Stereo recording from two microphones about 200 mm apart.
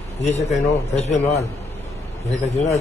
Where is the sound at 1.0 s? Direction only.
30° left (ahead or behind).